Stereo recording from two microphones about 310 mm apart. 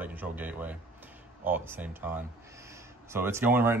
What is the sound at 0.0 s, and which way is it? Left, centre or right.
Speech, centre.